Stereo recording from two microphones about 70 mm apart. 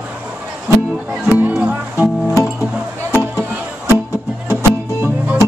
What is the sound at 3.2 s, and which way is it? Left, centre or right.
Music, right.